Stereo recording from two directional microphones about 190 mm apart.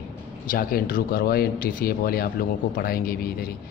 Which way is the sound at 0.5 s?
50° left (ahead or behind).